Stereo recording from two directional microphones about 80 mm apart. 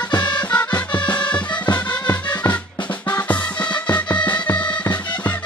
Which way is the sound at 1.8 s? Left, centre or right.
Left.